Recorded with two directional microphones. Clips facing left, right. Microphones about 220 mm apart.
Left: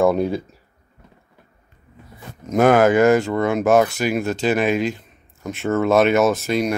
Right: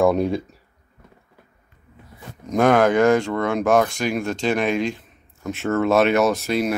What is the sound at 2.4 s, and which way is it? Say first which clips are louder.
Speech: left 2 dB; 5° left (ahead or behind).